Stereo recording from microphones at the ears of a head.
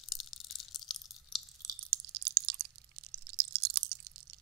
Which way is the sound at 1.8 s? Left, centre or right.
Right.